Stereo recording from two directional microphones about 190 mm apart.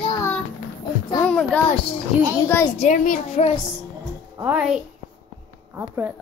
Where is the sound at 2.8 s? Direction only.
40° left (ahead or behind).